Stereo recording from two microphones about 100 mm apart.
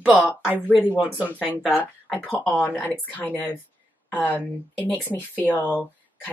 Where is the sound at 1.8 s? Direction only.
15° left (ahead or behind).